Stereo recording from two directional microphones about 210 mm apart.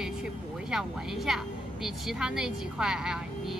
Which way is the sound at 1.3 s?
5° right (ahead or behind).